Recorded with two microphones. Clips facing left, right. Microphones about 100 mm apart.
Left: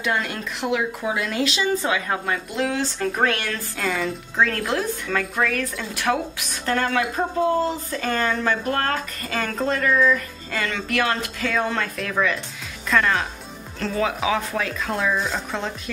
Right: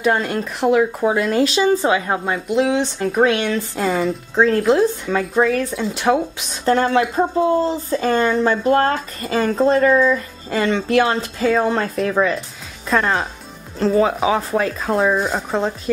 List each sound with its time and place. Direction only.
0.0 s speech: 40° right (ahead or behind); by 3.8 s 20° right (ahead or behind)
3.8 s speech: 30° right (ahead or behind)